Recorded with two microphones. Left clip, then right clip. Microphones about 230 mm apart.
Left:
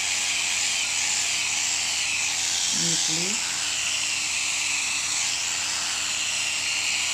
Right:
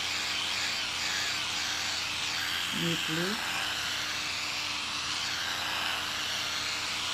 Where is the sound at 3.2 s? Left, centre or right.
Centre.